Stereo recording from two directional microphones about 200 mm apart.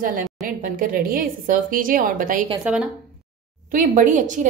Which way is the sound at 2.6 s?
5° right (ahead or behind).